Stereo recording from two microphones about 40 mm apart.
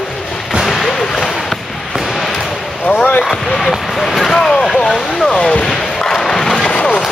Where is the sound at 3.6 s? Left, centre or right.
Centre.